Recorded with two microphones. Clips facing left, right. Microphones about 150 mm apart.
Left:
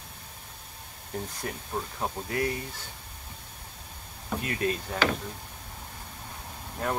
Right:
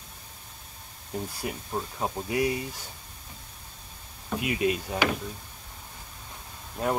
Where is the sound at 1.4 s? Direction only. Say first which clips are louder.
Right 2 dB; 10° right (ahead or behind).